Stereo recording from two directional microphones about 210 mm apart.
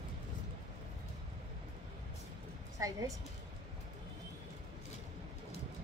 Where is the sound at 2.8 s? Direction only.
15° right (ahead or behind).